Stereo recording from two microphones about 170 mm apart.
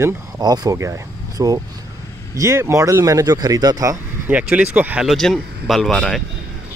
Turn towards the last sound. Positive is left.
turn(degrees=5)  # may be behind; listen again after turning